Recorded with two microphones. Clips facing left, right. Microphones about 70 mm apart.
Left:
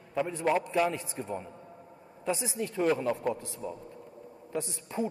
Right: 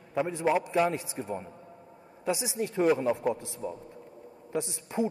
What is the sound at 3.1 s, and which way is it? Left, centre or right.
Speech, centre.